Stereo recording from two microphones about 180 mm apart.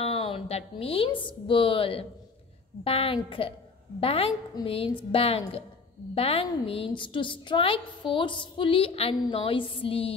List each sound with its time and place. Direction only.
0.0 s a woman's voice: 35° left (ahead or behind)